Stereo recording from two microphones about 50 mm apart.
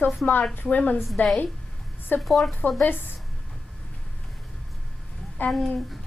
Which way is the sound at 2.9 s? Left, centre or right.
Left.